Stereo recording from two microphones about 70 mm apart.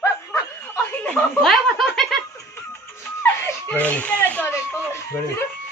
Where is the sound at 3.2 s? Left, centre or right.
Left.